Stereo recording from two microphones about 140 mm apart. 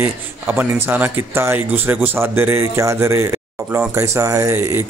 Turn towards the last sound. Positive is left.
turn(degrees=-15)  # may be behind; listen again after turning